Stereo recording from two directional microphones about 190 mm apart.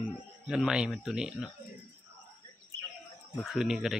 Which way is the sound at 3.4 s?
Centre (ahead or behind).